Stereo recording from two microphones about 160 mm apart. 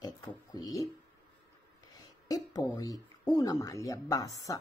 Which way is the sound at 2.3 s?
25° left (ahead or behind).